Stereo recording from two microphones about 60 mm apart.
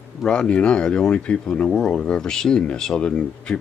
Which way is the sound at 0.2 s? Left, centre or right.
Centre.